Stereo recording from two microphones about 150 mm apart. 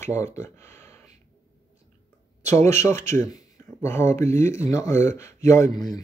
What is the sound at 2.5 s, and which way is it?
Speech, 50° right (ahead or behind).